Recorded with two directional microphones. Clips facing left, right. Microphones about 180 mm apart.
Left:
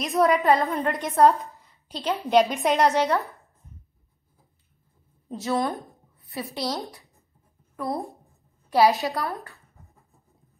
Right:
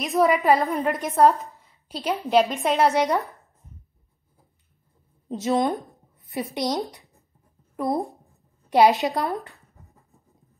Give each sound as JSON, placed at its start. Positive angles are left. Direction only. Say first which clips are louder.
{"t": 0.0, "sound": "a woman's voice", "louder": "right 1 dB", "side_deg": 0}
{"t": 5.3, "sound": "a woman's voice", "louder": "right 3 dB", "side_deg": -20}
{"t": 7.7, "sound": "speech", "louder": "right 4 dB", "side_deg": -20}
{"t": 8.6, "sound": "a sound", "louder": "right 2 dB", "side_deg": -20}
{"t": 9.0, "sound": "a woman's voice", "louder": "right 3 dB", "side_deg": -20}